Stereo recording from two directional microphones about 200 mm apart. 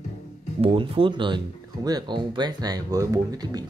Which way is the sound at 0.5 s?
30° right (ahead or behind).